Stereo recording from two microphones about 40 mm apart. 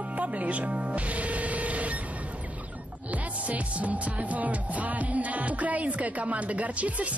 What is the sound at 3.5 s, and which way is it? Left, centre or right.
Music, right.